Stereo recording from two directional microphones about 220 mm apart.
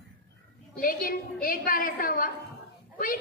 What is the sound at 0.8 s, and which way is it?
A woman's voice, 40° left (ahead or behind).